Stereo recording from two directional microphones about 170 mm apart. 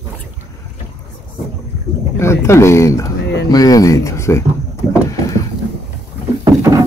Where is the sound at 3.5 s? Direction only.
20° left (ahead or behind).